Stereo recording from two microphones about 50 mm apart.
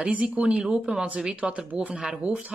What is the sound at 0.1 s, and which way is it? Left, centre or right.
Speech, right.